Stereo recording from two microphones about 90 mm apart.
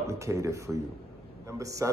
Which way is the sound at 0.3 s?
35° right (ahead or behind).